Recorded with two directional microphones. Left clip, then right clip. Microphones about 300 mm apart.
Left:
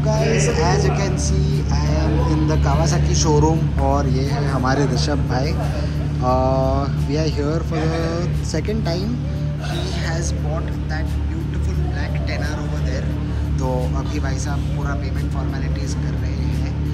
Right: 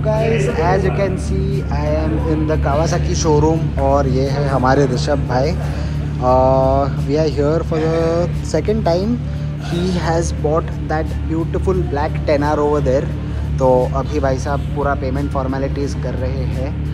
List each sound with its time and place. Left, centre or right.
0.6 s speech: centre
11.6 s speech: centre